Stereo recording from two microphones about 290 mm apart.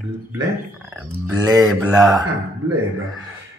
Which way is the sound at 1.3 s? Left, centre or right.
Centre.